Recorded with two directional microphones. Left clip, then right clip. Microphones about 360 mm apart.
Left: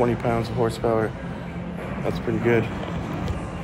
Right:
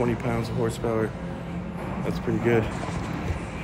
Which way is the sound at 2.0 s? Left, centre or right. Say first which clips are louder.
Left 3 dB; centre.